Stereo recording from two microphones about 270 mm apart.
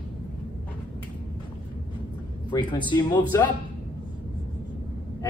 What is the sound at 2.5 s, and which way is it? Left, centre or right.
Speech, centre.